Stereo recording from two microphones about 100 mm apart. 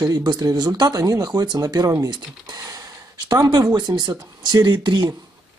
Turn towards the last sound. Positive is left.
turn(degrees=-50)  # may be behind; listen again after turning